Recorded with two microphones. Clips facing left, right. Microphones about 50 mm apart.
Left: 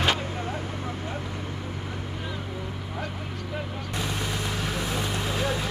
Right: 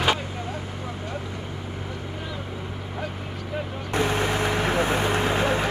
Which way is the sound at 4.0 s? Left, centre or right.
Right.